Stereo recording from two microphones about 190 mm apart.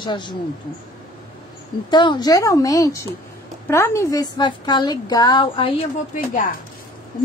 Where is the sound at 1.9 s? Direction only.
20° left (ahead or behind).